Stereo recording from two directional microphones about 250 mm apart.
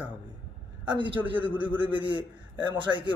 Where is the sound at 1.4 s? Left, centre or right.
Centre.